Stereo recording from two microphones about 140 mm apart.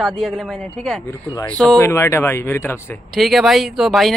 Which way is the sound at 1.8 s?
20° left (ahead or behind).